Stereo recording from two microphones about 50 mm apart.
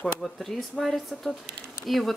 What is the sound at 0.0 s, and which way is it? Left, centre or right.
Speech, centre.